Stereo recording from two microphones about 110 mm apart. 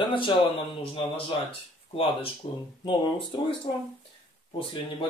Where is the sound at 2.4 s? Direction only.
75° left (ahead or behind).